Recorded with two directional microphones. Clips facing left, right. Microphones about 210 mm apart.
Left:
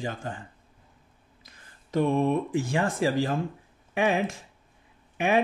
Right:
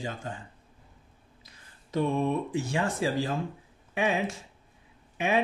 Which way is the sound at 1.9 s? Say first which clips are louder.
Left 3 dB; 50° left (ahead or behind).